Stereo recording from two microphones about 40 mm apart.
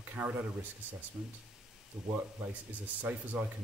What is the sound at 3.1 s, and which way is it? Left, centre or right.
Speech, right.